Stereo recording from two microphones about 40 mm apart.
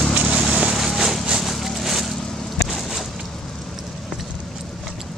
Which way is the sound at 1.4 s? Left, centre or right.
Centre.